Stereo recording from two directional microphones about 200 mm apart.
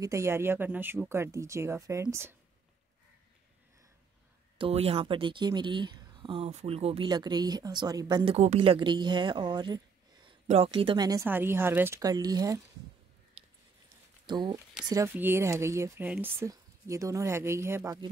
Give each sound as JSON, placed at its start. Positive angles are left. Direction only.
{"t": 0.0, "sound": "speech", "side_deg": -15}
{"t": 4.6, "sound": "speech", "side_deg": -30}
{"t": 14.2, "sound": "speech", "side_deg": -20}